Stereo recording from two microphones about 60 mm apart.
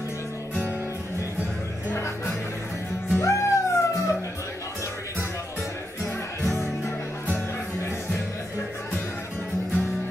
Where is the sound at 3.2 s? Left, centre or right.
Left.